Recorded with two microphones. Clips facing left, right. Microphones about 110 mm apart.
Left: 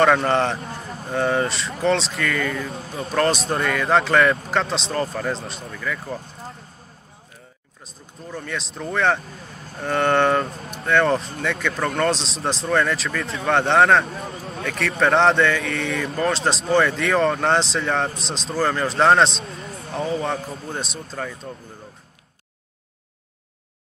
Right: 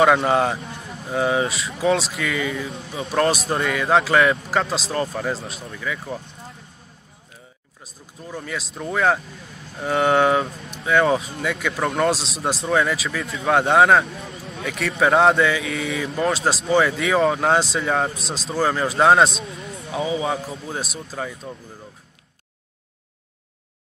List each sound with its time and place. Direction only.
0.0 s speech: 5° right (ahead or behind)
0.6 s a sound: 35° left (ahead or behind)
1.0 s speech: 5° right (ahead or behind)
2.7 s speech: 40° left (ahead or behind)
3.0 s speech: 5° right (ahead or behind)
8.2 s speech: 5° right (ahead or behind)
9.2 s speech: 45° left (ahead or behind)
9.8 s speech: 5° right (ahead or behind)
10.5 s speech: 40° left (ahead or behind)
10.8 s speech: 5° right (ahead or behind)
14.1 s speech: 45° left (ahead or behind)
14.6 s speech: centre (ahead or behind)